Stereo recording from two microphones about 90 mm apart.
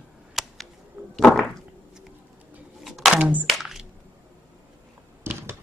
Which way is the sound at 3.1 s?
15° right (ahead or behind).